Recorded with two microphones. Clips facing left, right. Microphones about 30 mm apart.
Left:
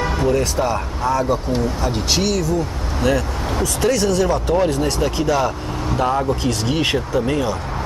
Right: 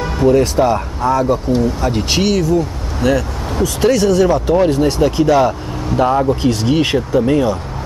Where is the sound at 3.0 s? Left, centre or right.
Centre.